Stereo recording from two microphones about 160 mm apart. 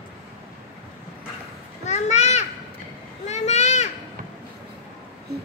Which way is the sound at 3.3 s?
45° left (ahead or behind).